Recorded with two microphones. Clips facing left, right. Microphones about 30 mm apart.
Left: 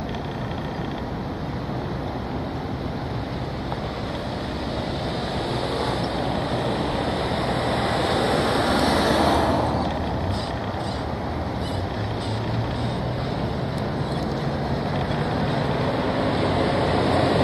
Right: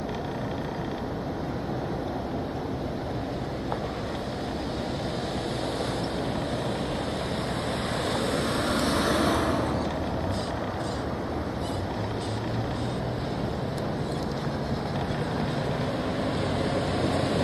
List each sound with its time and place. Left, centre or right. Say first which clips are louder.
7.7 s vehicle: left 6 dB; left
15.4 s vehicle: left 5 dB; left